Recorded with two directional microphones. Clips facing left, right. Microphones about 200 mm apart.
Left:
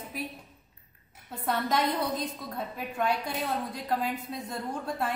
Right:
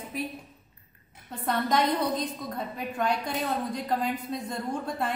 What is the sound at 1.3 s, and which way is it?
A woman's voice, 5° left (ahead or behind).